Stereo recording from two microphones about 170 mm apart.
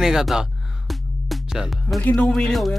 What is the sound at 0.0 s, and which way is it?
Music, centre (ahead or behind).